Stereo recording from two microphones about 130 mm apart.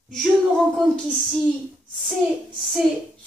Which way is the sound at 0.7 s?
5° left (ahead or behind).